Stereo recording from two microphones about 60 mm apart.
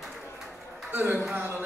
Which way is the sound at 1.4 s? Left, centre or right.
Right.